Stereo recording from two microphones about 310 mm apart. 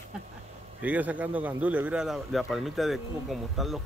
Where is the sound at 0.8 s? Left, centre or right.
Centre.